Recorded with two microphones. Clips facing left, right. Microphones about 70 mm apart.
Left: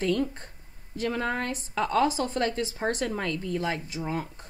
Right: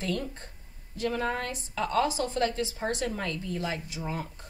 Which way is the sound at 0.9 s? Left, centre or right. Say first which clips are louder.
Left 1 dB; left.